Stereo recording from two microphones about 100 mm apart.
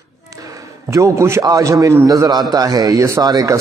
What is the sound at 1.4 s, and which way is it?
A man's voice, 35° right (ahead or behind).